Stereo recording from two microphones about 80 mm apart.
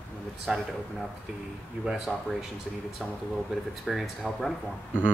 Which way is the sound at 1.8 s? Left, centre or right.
Centre.